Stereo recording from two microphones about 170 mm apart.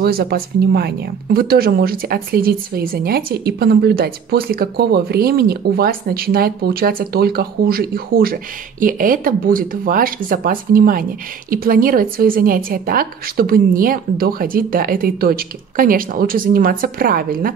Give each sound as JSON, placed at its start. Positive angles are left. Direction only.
{"t": 0.0, "sound": "speech", "side_deg": -65}